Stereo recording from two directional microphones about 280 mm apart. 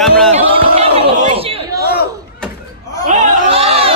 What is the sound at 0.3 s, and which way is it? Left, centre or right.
Chatter, right.